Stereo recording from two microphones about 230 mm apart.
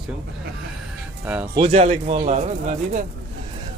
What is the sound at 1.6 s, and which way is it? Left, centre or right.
Speech, right.